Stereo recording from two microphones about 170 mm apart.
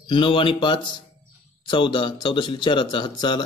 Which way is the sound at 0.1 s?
30° left (ahead or behind).